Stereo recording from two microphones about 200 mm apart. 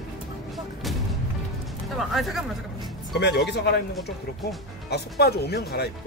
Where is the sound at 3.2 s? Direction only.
55° left (ahead or behind).